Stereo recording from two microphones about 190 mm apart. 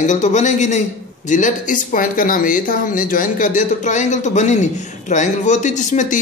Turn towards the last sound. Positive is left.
turn(degrees=40)  # may be behind; listen again after turning